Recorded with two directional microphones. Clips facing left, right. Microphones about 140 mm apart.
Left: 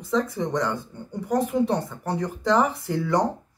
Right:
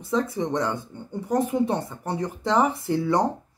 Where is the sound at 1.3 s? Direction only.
25° right (ahead or behind).